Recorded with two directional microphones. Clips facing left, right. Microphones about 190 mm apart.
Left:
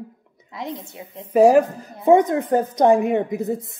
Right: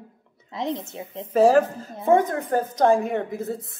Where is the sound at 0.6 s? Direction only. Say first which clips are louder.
Right 3 dB; 25° right (ahead or behind).